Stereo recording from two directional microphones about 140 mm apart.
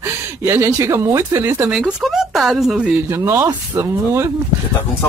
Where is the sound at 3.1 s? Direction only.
20° right (ahead or behind).